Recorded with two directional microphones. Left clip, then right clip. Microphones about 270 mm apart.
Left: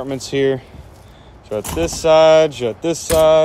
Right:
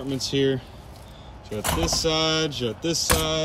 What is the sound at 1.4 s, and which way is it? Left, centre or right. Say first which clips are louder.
Speech: left 6 dB; centre.